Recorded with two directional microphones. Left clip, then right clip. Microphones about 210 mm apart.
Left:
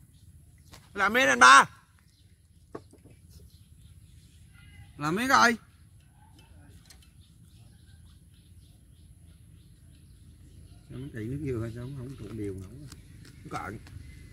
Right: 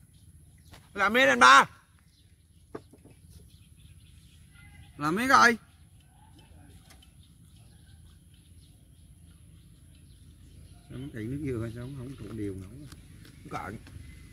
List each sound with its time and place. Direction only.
0.7 s a sound: 15° left (ahead or behind)
1.0 s speech: 5° left (ahead or behind)
4.9 s speech: 10° right (ahead or behind)
11.1 s speech: 10° right (ahead or behind)
12.9 s horse: 15° left (ahead or behind)